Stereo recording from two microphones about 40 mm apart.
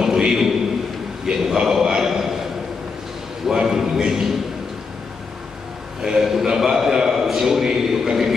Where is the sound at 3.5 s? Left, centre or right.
Centre.